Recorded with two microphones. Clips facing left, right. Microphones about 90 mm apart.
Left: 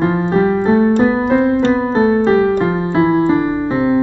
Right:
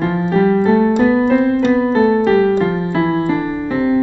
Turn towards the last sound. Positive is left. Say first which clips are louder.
# left 1 dB
turn(degrees=30)  # may be behind; listen again after turning